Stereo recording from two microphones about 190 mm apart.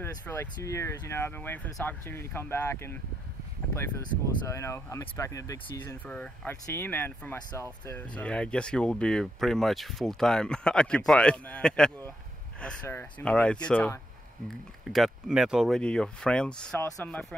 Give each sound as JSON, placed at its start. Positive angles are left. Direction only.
{"t": 0.0, "sound": "speech", "side_deg": 10}
{"t": 4.5, "sound": "speech", "side_deg": 15}